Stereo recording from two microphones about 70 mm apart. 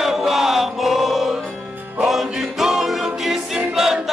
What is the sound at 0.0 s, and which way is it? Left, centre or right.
Chant, centre.